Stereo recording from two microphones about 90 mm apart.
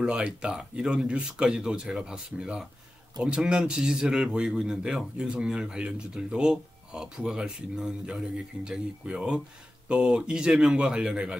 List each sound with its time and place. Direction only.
0.0 s speech: 10° right (ahead or behind)